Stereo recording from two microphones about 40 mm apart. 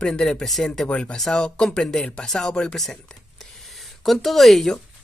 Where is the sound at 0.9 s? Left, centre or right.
Left.